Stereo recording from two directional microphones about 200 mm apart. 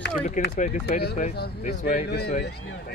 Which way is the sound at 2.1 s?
55° left (ahead or behind).